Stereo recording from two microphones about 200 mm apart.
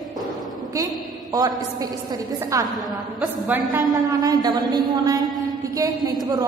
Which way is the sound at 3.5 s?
10° right (ahead or behind).